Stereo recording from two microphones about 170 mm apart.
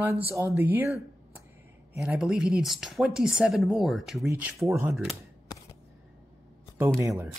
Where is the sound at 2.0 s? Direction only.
5° right (ahead or behind).